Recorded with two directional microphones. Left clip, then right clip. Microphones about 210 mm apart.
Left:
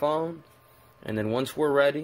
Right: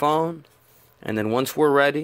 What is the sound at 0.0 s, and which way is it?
Speech, 35° right (ahead or behind).